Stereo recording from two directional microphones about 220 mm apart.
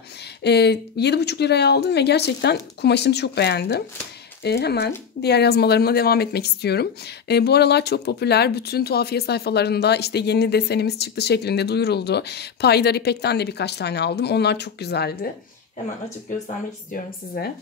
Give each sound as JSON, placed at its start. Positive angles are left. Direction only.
{"t": 0.4, "sound": "speech", "side_deg": 50}
{"t": 17.4, "sound": "speech", "side_deg": 45}